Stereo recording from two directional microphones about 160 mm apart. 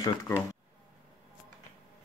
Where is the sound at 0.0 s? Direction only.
20° left (ahead or behind).